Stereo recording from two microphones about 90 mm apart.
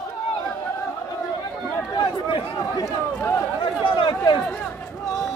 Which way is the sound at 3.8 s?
55° left (ahead or behind).